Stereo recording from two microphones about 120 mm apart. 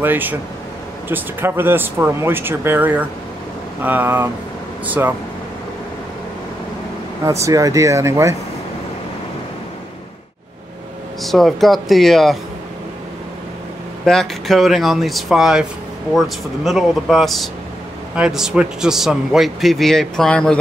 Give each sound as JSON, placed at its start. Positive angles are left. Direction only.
{"t": 0.0, "sound": "speech", "side_deg": -15}
{"t": 7.2, "sound": "speech", "side_deg": -25}
{"t": 11.2, "sound": "a man's voice", "side_deg": 0}
{"t": 14.0, "sound": "a man's voice", "side_deg": 5}